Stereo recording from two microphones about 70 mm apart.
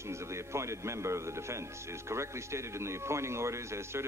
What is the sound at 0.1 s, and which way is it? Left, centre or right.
A man's voice, right.